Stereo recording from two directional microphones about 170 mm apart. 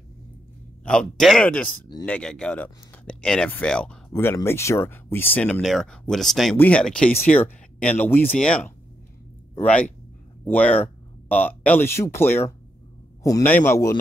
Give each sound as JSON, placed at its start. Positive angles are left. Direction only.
{"t": 0.8, "sound": "speech", "side_deg": 5}
{"t": 4.1, "sound": "speech", "side_deg": 15}